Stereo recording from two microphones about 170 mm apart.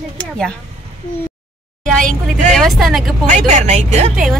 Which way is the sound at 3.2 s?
45° right (ahead or behind).